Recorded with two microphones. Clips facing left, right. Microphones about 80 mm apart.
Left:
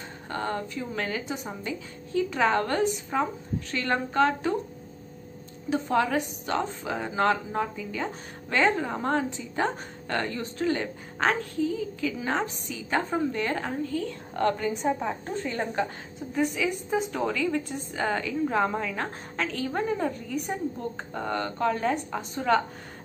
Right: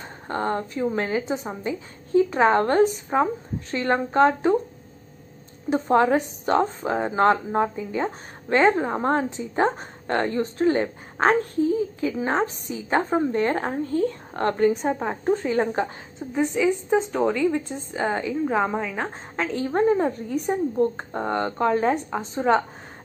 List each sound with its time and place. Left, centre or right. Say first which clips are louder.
0.3 s a woman's voice: right 5 dB; right
5.7 s a woman's voice: right 6 dB; right
16.3 s a woman's voice: right 5 dB; right